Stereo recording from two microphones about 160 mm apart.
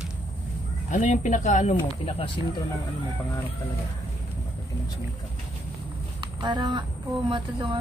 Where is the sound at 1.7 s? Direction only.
35° left (ahead or behind).